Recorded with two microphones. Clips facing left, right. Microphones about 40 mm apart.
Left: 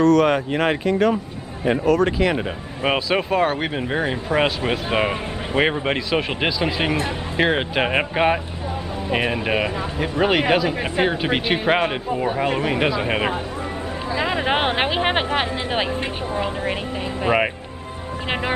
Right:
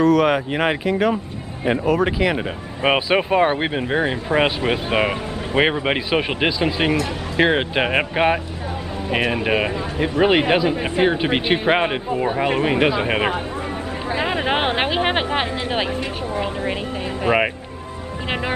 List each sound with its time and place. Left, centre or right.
0.0 s speech: centre
2.8 s speech: centre
12.4 s speech: right
12.7 s speech: centre
14.3 s speech: centre
16.4 s speech: centre